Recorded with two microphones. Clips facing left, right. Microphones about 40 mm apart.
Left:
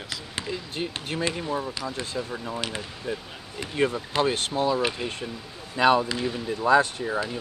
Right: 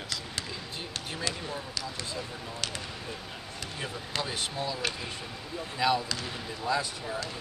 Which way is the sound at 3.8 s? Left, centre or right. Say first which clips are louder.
Left 12 dB; left.